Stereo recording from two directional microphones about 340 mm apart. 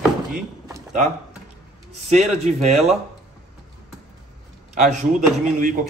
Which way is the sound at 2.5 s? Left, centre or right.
Centre.